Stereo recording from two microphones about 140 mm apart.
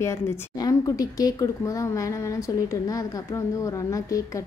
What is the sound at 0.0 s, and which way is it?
A woman's voice, 20° left (ahead or behind).